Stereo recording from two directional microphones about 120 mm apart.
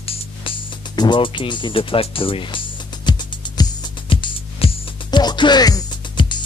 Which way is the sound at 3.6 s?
45° left (ahead or behind).